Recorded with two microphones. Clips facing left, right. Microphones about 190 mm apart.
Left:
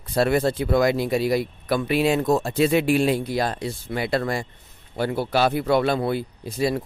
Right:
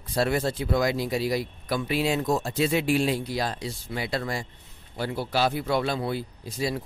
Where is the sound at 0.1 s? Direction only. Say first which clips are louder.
Left 5 dB; 60° left (ahead or behind).